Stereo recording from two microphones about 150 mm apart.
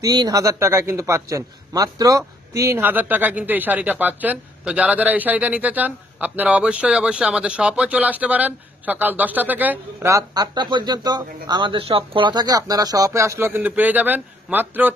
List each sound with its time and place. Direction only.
0.0 s a man's voice: 25° right (ahead or behind)
10.1 s speech: 25° right (ahead or behind)